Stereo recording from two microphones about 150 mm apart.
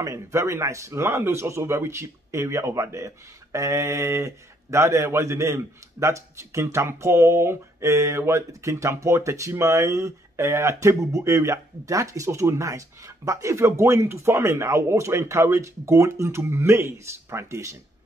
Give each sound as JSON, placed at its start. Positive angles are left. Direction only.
{"t": 0.0, "sound": "a man's voice", "side_deg": -20}